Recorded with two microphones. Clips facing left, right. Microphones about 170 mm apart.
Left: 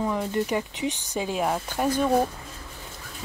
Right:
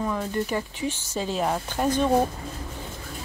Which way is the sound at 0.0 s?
15° left (ahead or behind).